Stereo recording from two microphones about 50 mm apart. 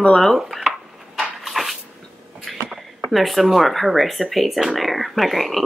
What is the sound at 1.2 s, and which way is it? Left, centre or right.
Dog, centre.